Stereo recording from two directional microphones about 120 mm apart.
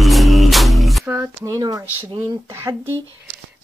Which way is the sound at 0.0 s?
Centre (ahead or behind).